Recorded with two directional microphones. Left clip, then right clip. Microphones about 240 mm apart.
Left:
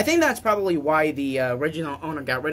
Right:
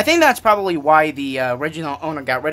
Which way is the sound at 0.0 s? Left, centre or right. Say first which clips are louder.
Right 7 dB; right.